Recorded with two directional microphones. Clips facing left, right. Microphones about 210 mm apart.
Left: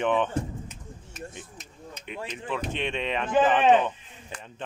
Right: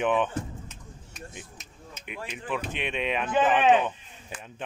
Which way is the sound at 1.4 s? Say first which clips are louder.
Left 2 dB; 5° right (ahead or behind).